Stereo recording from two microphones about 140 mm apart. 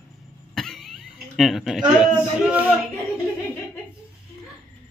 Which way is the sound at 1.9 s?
5° right (ahead or behind).